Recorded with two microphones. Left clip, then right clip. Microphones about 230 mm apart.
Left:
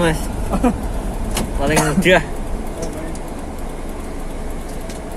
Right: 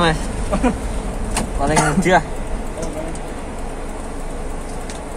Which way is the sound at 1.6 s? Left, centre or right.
Right.